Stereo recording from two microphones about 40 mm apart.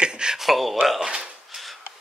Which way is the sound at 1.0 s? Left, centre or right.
Right.